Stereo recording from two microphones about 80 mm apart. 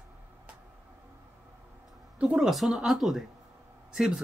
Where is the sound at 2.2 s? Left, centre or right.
Centre.